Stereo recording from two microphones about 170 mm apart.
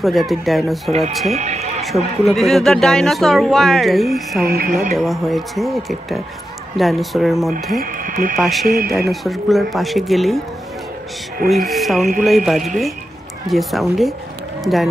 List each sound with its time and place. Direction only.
0.0 s speech: centre (ahead or behind)
1.3 s speech: 40° right (ahead or behind)
1.8 s speech: centre (ahead or behind)
4.5 s speech: 60° right (ahead or behind)
4.9 s speech: centre (ahead or behind)
7.8 s speech: 55° right (ahead or behind)
8.4 s speech: centre (ahead or behind)
8.6 s speech: 60° right (ahead or behind)
9.1 s speech: centre (ahead or behind)
11.4 s speech: centre (ahead or behind)